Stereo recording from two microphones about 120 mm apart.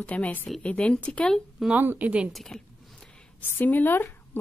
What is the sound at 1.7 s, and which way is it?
Speech, 15° right (ahead or behind).